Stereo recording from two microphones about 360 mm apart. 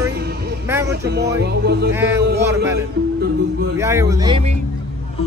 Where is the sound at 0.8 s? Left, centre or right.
Right.